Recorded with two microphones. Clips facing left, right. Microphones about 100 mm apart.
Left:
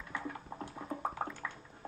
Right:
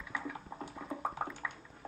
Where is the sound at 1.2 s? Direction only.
15° right (ahead or behind).